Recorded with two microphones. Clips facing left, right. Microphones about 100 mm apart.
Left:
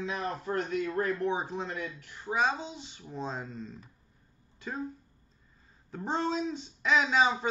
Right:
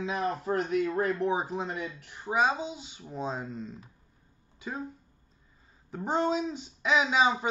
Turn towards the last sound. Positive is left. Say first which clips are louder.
# right 1 dB
turn(degrees=-5)  # may be behind; listen again after turning